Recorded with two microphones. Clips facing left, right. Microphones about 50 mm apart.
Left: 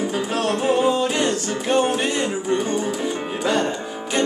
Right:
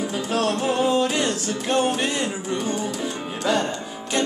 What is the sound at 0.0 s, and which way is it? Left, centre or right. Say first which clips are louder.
Music: left 1 dB; centre.